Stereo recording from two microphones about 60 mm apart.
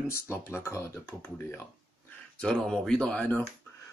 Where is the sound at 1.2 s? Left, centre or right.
Left.